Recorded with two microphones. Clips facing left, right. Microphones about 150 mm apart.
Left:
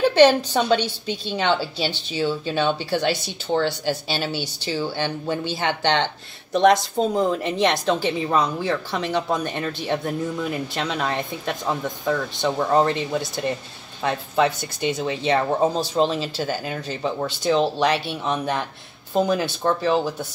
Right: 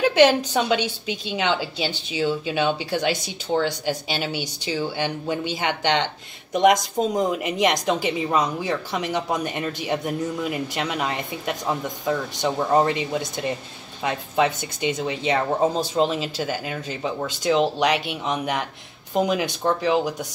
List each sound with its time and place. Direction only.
0.1 s a woman's voice: 15° right (ahead or behind)